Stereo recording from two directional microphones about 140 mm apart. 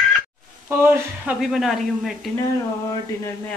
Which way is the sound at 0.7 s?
15° right (ahead or behind).